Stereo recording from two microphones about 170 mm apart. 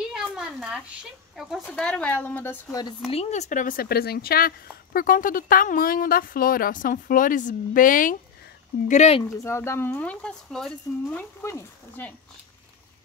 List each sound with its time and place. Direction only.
0.1 s a sound: 5° right (ahead or behind)
1.3 s speech: centre (ahead or behind)
3.1 s speech: 40° left (ahead or behind)
8.8 s speech: 40° left (ahead or behind)
9.3 s speech: 15° left (ahead or behind)